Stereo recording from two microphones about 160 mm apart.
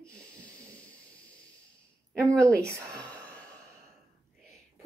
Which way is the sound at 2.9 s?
5° left (ahead or behind).